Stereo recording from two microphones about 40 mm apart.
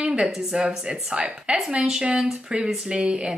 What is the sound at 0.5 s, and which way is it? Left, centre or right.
A woman's voice, centre.